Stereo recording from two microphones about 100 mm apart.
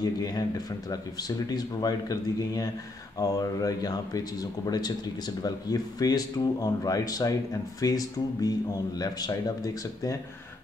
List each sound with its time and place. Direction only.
0.0 s speech: 40° left (ahead or behind)
1.5 s speech: 40° left (ahead or behind)